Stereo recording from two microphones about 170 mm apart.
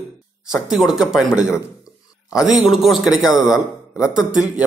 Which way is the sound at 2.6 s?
Centre (ahead or behind).